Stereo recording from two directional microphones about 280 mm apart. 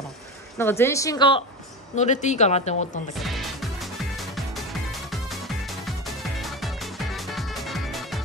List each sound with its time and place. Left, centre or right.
0.6 s a woman's voice: centre; by 2.9 s left
3.2 s music: centre